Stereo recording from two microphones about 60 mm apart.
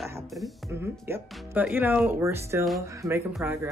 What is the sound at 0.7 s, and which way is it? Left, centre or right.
Speech, right.